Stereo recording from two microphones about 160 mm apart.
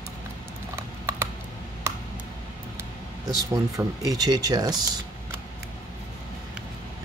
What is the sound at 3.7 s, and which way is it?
Speech, 20° right (ahead or behind).